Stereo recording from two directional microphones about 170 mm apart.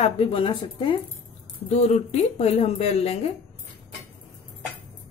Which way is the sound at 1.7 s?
40° left (ahead or behind).